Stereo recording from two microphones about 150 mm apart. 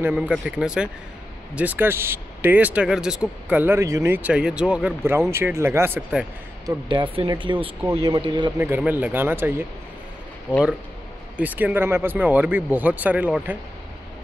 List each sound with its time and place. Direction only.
0.0 s speech: 10° right (ahead or behind)
6.6 s speech: 30° right (ahead or behind)
7.8 s speech: 15° right (ahead or behind)
8.1 s speech: 30° right (ahead or behind)
8.5 s speech: 15° right (ahead or behind)